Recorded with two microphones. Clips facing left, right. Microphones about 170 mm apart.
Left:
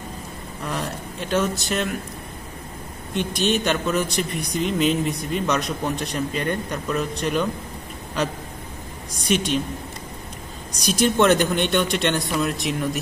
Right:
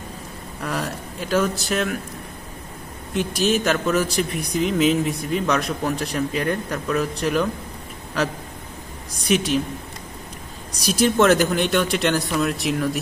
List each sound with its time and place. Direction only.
0.7 s a man's voice: 5° right (ahead or behind)
3.2 s a man's voice: 5° right (ahead or behind)
9.2 s a woman's voice: centre (ahead or behind)
10.8 s a man's voice: centre (ahead or behind)